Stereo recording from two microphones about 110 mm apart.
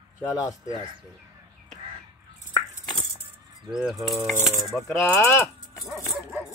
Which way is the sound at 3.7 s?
5° right (ahead or behind).